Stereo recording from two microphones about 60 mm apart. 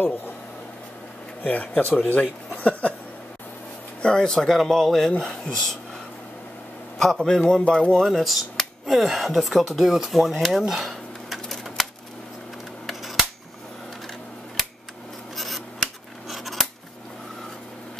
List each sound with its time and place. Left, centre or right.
1.4 s speech: left
4.0 s speech: centre
7.0 s speech: centre
8.0 s speech: centre
10.7 s a sound: centre
12.8 s cap gun: centre
15.3 s scissors: centre